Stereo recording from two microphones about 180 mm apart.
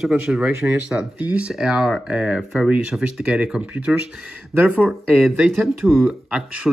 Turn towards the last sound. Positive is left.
turn(degrees=-5)  # may be behind; listen again after turning